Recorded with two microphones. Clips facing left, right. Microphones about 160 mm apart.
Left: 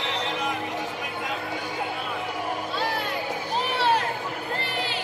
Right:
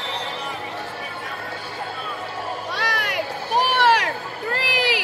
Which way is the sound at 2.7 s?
90° right.